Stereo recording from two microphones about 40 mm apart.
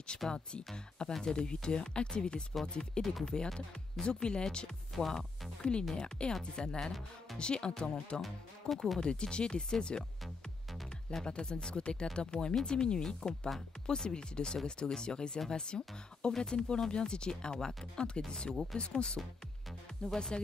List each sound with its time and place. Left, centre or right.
0.3 s speech: left
4.9 s speech: centre
5.6 s speech: left
8.2 s speech: centre
9.0 s speech: left
11.2 s speech: left
18.5 s speech: centre
18.8 s speech: left